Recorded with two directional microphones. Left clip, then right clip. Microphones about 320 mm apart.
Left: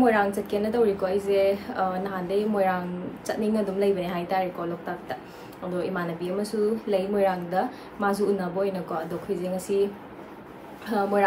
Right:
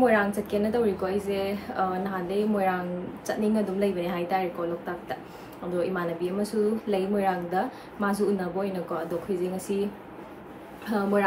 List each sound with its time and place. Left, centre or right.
0.0 s a woman's voice: centre
10.9 s a woman's voice: centre